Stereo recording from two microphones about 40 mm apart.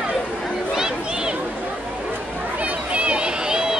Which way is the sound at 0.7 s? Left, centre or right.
Centre.